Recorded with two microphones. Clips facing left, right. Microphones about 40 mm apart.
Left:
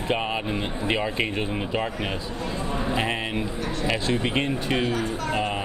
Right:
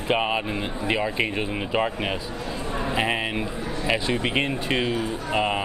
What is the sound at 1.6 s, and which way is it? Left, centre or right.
Speech, centre.